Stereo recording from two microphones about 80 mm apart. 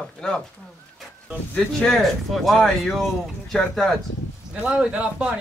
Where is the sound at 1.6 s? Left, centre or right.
Centre.